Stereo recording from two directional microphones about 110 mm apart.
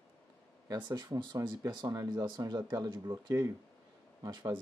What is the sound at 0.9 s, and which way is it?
Speech, 40° right (ahead or behind).